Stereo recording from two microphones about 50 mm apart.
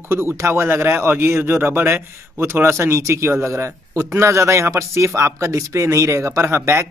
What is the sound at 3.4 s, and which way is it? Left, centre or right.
Speech, right.